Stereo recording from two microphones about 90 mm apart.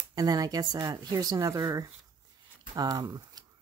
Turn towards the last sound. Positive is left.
turn(degrees=-45)  # may be behind; listen again after turning